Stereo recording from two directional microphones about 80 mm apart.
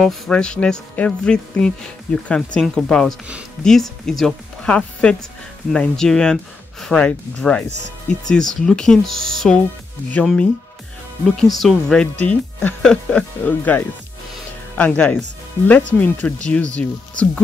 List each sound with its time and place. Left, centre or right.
0.0 s speech: centre
4.6 s speech: centre
7.0 s speech: centre
13.5 s speech: left